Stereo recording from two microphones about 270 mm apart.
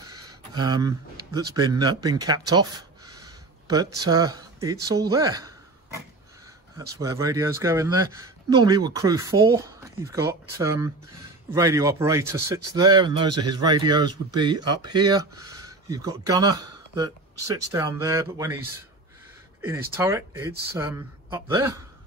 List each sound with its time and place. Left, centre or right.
0.6 s speech: centre
7.0 s speech: centre